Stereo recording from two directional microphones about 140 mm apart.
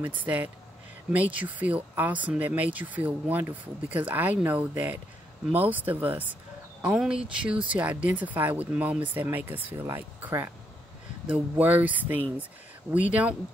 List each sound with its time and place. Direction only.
0.2 s speech: 10° right (ahead or behind)